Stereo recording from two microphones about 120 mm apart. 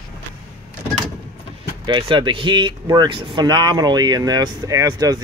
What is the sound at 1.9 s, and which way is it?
Speech, 40° right (ahead or behind).